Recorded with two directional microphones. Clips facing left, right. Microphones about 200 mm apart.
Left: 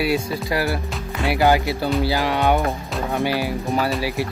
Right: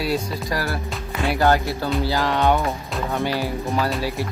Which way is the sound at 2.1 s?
15° left (ahead or behind).